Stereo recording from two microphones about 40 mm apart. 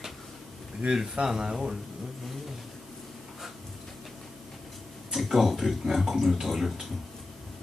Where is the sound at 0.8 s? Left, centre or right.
Centre.